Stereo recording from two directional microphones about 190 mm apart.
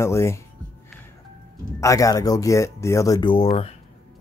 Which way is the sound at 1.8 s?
15° left (ahead or behind).